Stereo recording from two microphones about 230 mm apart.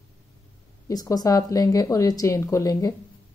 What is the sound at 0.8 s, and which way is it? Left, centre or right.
A woman's voice, centre.